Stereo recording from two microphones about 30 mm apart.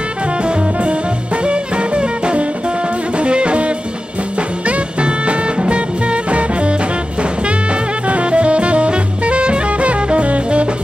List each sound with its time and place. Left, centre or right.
0.4 s music: right